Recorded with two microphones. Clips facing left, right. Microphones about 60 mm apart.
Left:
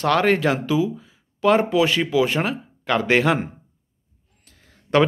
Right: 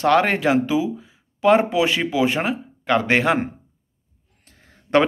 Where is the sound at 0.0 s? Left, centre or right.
Right.